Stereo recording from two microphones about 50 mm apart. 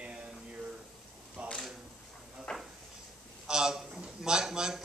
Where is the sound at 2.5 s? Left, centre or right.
Centre.